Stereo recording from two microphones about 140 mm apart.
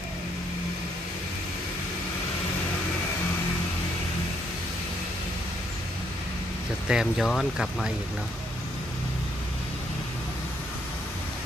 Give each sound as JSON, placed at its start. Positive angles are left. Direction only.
{"t": 6.9, "sound": "speech", "side_deg": -5}